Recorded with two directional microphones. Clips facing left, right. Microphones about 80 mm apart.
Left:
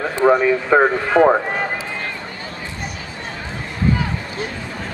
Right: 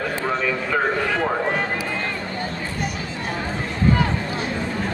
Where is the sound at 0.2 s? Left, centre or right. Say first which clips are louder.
Left 13 dB; left.